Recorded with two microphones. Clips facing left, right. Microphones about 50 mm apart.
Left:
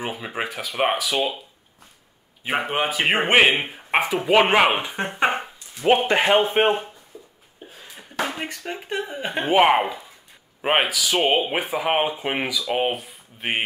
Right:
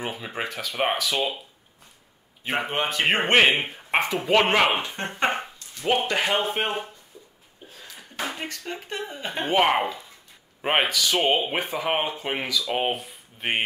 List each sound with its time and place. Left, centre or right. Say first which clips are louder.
0.0 s speech: left 2 dB; centre
2.4 s speech: left 3 dB; centre
5.9 s speech: left 6 dB; left
8.4 s speech: left 3 dB; centre